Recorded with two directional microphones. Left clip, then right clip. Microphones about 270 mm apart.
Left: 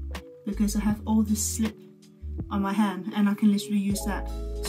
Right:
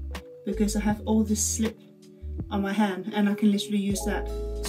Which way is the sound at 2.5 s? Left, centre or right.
Left.